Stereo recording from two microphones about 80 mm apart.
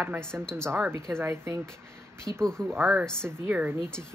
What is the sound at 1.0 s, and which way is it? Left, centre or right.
Speech, right.